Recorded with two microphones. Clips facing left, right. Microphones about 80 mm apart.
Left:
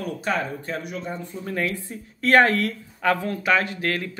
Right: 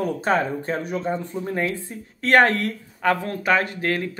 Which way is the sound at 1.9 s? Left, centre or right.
Right.